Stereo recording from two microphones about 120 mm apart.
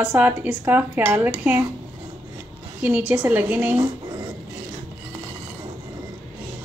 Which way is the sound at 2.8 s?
15° right (ahead or behind).